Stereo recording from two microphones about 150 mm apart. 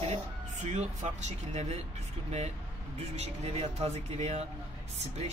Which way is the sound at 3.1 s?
45° right (ahead or behind).